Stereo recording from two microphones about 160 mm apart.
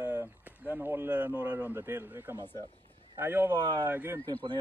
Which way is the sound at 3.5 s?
25° right (ahead or behind).